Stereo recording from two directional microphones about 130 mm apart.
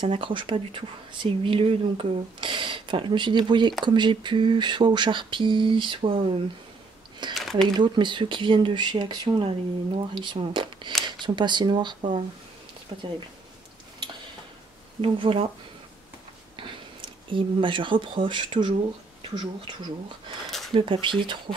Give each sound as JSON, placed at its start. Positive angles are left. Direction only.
{"t": 0.0, "sound": "speech", "side_deg": -40}
{"t": 7.3, "sound": "a sound", "side_deg": 0}
{"t": 7.6, "sound": "speech", "side_deg": -35}
{"t": 15.0, "sound": "speech", "side_deg": -45}
{"t": 16.5, "sound": "speech", "side_deg": -40}